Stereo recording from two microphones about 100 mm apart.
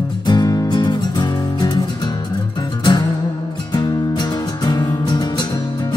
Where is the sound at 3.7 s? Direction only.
45° left (ahead or behind).